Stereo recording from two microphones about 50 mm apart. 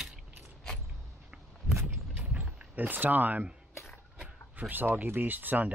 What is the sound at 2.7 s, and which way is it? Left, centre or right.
Speech, right.